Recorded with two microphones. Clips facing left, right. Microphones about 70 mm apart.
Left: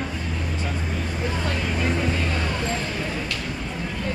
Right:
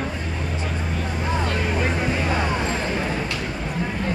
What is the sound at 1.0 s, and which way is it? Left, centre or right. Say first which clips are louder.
Vehicle: right 4 dB; right.